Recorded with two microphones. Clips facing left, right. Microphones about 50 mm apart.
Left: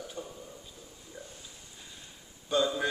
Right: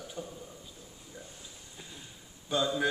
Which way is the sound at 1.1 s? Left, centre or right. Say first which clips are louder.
Left 2 dB; centre.